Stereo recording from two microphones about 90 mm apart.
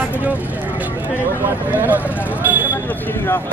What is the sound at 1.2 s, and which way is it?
Speech, 25° left (ahead or behind).